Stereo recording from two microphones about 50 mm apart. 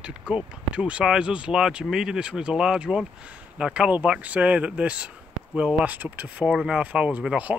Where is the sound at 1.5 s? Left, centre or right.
Centre.